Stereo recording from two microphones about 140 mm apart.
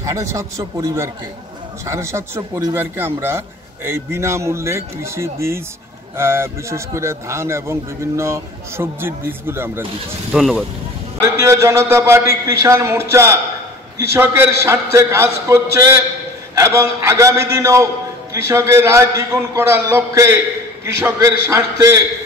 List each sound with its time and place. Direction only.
0.0 s speech: 20° right (ahead or behind)
10.3 s speech: centre (ahead or behind)
11.1 s speech: 20° right (ahead or behind)